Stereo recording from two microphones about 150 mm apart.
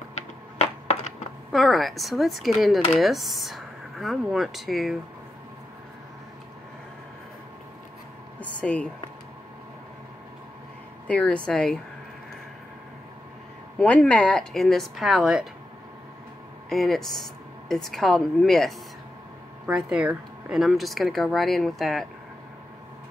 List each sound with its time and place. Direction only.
0.1 s a sound: 45° left (ahead or behind)
1.5 s speech: centre (ahead or behind)
8.4 s speech: 10° left (ahead or behind)
11.1 s speech: 10° left (ahead or behind)
13.7 s speech: 5° left (ahead or behind)
16.6 s speech: centre (ahead or behind)